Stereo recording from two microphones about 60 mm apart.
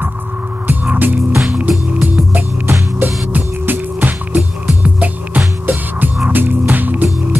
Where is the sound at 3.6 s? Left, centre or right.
Right.